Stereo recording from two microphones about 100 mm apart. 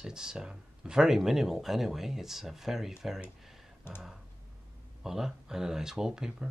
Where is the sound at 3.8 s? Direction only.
20° left (ahead or behind).